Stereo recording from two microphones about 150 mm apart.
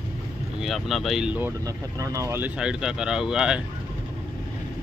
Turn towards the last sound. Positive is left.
turn(degrees=-5)  # may be behind; listen again after turning